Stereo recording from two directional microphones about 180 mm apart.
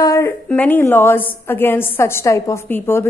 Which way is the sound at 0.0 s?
15° left (ahead or behind).